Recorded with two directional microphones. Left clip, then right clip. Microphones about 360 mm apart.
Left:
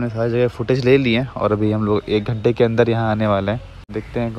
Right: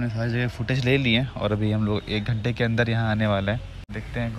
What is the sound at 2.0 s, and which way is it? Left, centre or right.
Speech, centre.